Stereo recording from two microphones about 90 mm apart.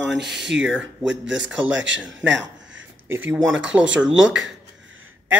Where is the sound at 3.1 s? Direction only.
25° right (ahead or behind).